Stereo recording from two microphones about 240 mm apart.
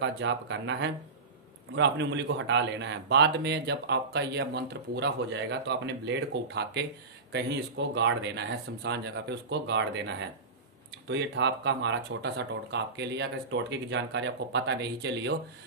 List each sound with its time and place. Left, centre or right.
0.0 s speech: right